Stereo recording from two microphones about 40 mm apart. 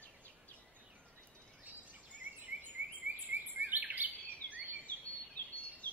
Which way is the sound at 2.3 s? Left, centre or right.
Right.